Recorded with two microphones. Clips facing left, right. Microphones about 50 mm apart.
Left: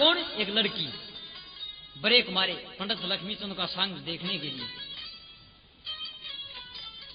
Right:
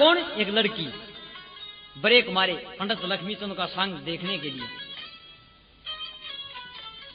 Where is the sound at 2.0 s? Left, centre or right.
Right.